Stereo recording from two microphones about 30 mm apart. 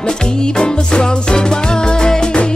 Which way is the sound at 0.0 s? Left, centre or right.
Left.